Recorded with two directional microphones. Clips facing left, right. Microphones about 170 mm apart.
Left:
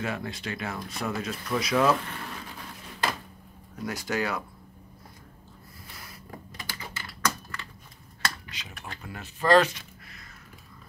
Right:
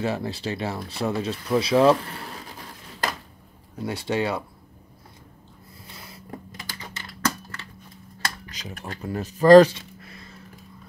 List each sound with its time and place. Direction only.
0.0 s speech: 30° right (ahead or behind)
3.7 s speech: 30° right (ahead or behind)
6.0 s a sound: 25° right (ahead or behind)
7.2 s typing: 30° right (ahead or behind)
8.5 s speech: 40° right (ahead or behind)